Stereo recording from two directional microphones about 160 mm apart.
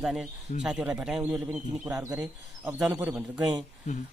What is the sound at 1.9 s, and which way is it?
A man's voice, 20° right (ahead or behind).